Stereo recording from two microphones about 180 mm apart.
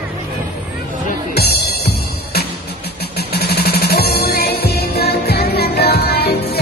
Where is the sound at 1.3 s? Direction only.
65° left (ahead or behind).